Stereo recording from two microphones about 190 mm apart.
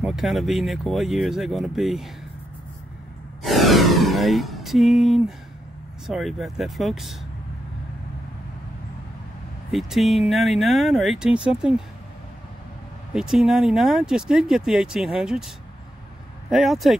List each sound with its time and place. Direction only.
0.0 s speech: centre (ahead or behind)
3.4 s a sound: centre (ahead or behind)
6.0 s speech: centre (ahead or behind)
9.7 s speech: centre (ahead or behind)
13.1 s speech: 5° right (ahead or behind)